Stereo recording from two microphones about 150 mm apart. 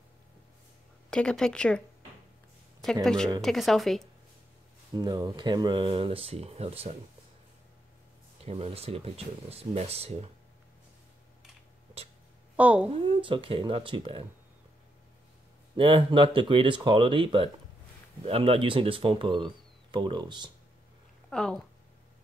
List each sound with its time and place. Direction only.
1.1 s a woman's voice: 5° left (ahead or behind)
3.3 s a woman's voice: centre (ahead or behind)
4.9 s speech: 25° right (ahead or behind); by 7.0 s 45° right (ahead or behind)
8.5 s speech: 40° right (ahead or behind)
12.5 s a woman's voice: 10° right (ahead or behind)
12.9 s speech: 35° right (ahead or behind)
15.7 s speech: 35° right (ahead or behind)
21.3 s a woman's voice: 5° left (ahead or behind)